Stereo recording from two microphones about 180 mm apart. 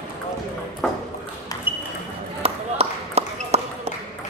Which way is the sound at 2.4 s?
35° right (ahead or behind).